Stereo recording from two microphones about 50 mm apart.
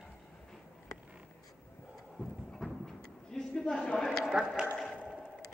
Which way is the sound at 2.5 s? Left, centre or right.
Centre.